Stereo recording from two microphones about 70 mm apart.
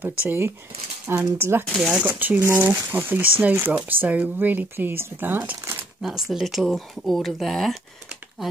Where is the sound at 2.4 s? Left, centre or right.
Right.